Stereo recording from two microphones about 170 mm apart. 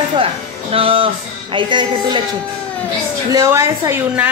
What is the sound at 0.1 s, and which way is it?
Speech, 35° right (ahead or behind).